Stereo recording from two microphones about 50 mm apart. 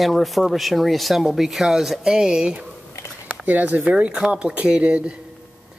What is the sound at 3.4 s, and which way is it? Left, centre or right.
Speech, right.